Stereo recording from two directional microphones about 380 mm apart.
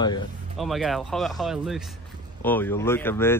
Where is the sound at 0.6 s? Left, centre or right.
Centre.